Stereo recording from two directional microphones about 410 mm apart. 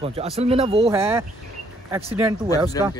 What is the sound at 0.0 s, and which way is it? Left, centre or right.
Speech, centre.